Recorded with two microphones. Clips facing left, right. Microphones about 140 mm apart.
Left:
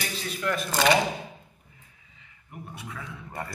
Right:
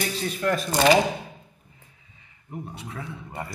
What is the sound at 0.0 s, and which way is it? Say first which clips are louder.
Shuffling cards: right 5 dB; 45° right (ahead or behind).